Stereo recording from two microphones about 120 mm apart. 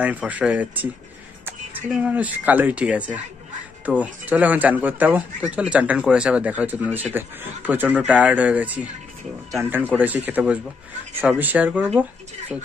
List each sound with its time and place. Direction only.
0.0 s speech: 10° right (ahead or behind)